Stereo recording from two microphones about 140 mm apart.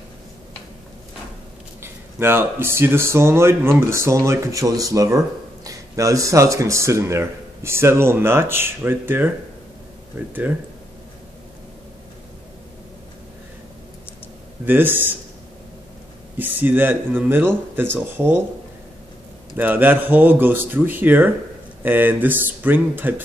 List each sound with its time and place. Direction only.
1.8 s speech: 15° right (ahead or behind)
14.6 s speech: 15° right (ahead or behind)
16.3 s speech: 15° right (ahead or behind)
19.5 s speech: 15° right (ahead or behind)